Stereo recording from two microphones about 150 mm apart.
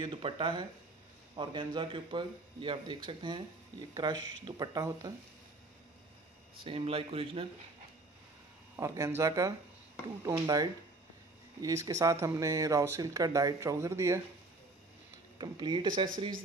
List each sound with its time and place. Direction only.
0.0 s a man's voice: 35° right (ahead or behind)
6.6 s a man's voice: 40° right (ahead or behind)
8.7 s speech: 20° right (ahead or behind)
15.3 s speech: 30° right (ahead or behind)